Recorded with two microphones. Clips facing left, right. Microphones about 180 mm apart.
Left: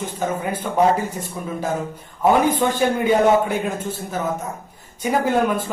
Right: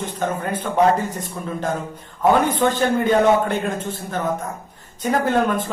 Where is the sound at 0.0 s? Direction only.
10° left (ahead or behind).